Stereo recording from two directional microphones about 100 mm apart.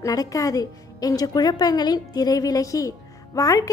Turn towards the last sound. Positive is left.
turn(degrees=35)  # may be behind; listen again after turning